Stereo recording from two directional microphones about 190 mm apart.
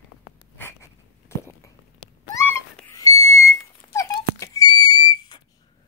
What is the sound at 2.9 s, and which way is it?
Whistle, 15° left (ahead or behind).